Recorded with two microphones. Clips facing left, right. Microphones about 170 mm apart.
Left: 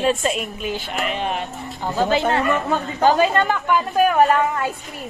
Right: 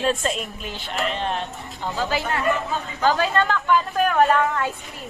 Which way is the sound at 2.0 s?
20° left (ahead or behind).